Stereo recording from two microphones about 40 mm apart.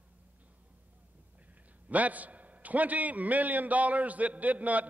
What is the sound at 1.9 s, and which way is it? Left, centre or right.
A man's voice, right.